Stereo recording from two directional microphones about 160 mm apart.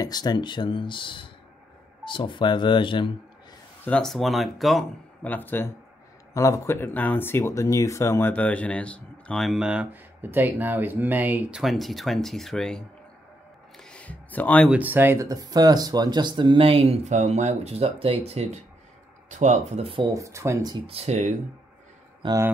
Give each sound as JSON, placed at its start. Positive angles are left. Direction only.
{"t": 0.0, "sound": "speech", "side_deg": 25}
{"t": 3.8, "sound": "speech", "side_deg": 5}
{"t": 13.7, "sound": "a sound", "side_deg": 5}
{"t": 14.7, "sound": "speech", "side_deg": -10}
{"t": 20.2, "sound": "speech", "side_deg": -20}
{"t": 20.8, "sound": "speech", "side_deg": -40}
{"t": 22.2, "sound": "speech", "side_deg": -30}